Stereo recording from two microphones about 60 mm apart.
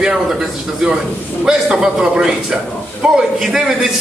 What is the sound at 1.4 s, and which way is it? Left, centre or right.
A man's voice, centre.